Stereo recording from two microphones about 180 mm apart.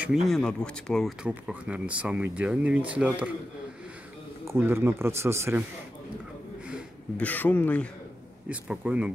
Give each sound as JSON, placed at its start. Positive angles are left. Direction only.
{"t": 0.0, "sound": "speech", "side_deg": -5}
{"t": 4.5, "sound": "speech", "side_deg": -10}
{"t": 7.2, "sound": "speech", "side_deg": 10}
{"t": 8.5, "sound": "speech", "side_deg": -5}